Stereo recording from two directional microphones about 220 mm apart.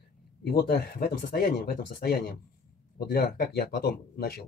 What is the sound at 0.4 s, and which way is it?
Speech, 45° left (ahead or behind).